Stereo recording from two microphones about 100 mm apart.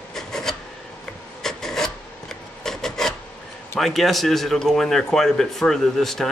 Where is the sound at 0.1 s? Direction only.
5° left (ahead or behind).